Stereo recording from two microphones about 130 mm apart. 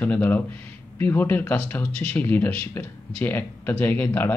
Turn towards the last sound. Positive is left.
turn(degrees=15)  # may be behind; listen again after turning